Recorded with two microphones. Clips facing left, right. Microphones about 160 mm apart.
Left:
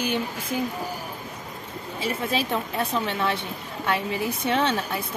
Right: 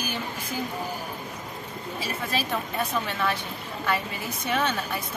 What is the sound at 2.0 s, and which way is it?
Speech, 25° left (ahead or behind).